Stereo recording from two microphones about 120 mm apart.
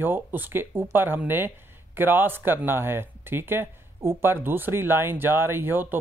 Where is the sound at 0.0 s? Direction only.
15° right (ahead or behind).